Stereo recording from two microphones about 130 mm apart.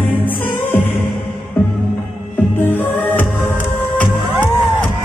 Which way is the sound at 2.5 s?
15° left (ahead or behind).